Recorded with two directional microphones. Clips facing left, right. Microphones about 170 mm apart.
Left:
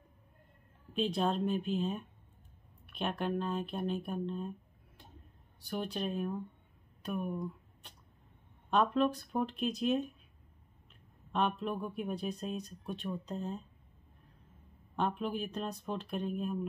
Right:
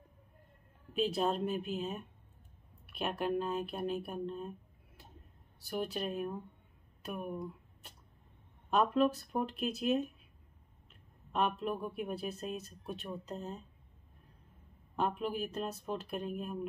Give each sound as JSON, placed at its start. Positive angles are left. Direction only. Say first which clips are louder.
{"t": 0.9, "sound": "speech", "louder": "even", "side_deg": -5}
{"t": 5.7, "sound": "speech", "louder": "even", "side_deg": -5}
{"t": 7.0, "sound": "a sound", "louder": "left 3 dB", "side_deg": -5}
{"t": 8.6, "sound": "speech", "louder": "even", "side_deg": -5}
{"t": 11.3, "sound": "speech", "louder": "even", "side_deg": -5}
{"t": 15.0, "sound": "speech", "louder": "even", "side_deg": -5}